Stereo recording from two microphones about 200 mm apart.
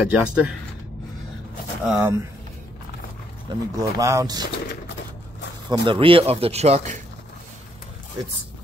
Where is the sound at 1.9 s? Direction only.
10° right (ahead or behind).